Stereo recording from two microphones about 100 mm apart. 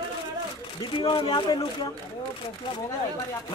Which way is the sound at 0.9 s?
50° left (ahead or behind).